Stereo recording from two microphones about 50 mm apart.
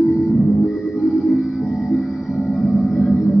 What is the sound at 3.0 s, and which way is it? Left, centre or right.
Gong, left.